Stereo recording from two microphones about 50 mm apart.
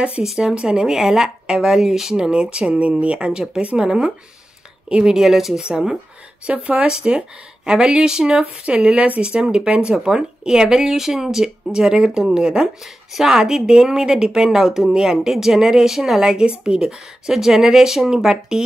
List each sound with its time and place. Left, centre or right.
0.2 s a woman's voice: centre
6.4 s a woman's voice: right